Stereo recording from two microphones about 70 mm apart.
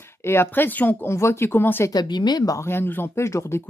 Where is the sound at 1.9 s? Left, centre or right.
Left.